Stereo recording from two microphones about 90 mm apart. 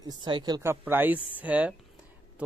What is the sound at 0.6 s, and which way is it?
Speech, 25° right (ahead or behind).